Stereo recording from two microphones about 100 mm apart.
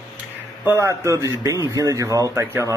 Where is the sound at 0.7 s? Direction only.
30° right (ahead or behind).